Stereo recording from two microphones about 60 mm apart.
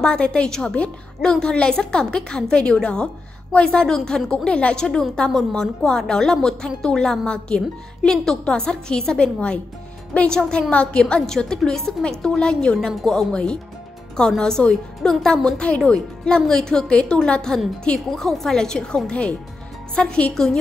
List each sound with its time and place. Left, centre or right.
0.0 s a woman's voice: centre